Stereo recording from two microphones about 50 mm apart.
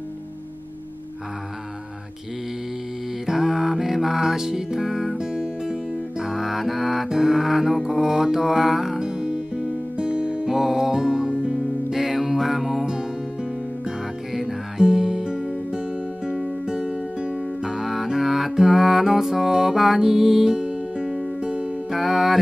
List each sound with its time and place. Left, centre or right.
3.3 s music: centre
5.2 s music: centre
10.5 s music: centre
12.8 s music: centre
16.6 s music: centre
21.9 s music: centre